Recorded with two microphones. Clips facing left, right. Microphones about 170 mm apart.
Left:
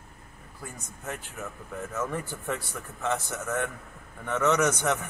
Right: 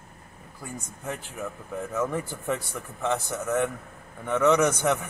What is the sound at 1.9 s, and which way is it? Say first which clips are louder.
A man's voice: right 4 dB; 15° right (ahead or behind).